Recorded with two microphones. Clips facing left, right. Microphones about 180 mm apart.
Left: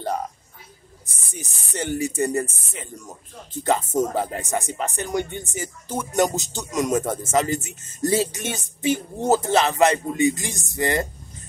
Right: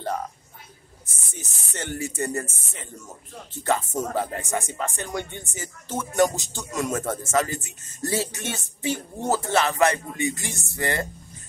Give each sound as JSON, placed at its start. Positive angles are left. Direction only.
{"t": 1.0, "sound": "speech", "side_deg": 15}